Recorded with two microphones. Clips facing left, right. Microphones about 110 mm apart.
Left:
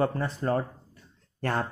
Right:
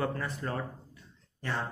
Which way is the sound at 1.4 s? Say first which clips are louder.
Left 6 dB; 50° left (ahead or behind).